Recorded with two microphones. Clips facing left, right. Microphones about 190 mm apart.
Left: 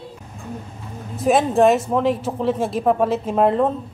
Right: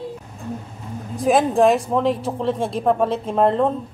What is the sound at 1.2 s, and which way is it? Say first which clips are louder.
Speech: even; centre (ahead or behind).